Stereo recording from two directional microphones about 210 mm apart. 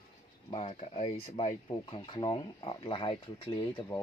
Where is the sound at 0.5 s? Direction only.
30° left (ahead or behind).